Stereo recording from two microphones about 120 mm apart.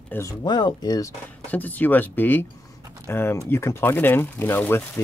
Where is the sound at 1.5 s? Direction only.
15° left (ahead or behind).